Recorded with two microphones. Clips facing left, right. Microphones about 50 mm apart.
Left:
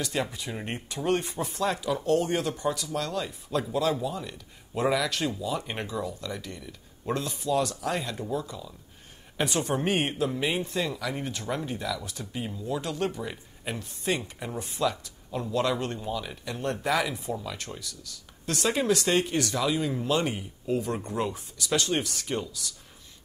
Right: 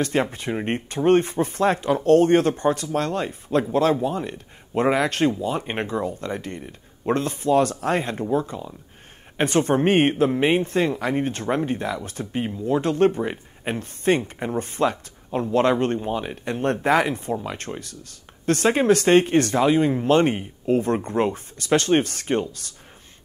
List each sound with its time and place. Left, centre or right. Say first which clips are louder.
0.0 s speech: right 8 dB; right